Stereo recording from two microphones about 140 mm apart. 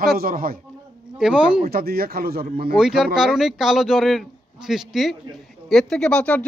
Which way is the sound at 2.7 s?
5° right (ahead or behind).